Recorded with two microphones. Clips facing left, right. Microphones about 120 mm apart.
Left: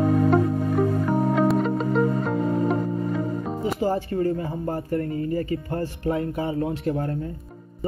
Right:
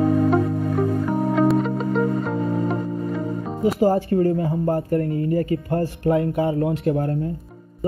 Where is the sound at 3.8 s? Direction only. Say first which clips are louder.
Right 5 dB; 45° right (ahead or behind).